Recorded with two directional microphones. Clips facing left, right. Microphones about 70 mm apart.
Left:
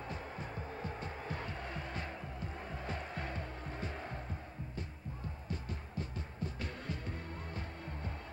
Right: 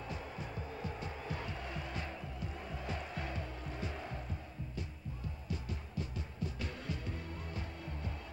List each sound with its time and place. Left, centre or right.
0.0 s music: left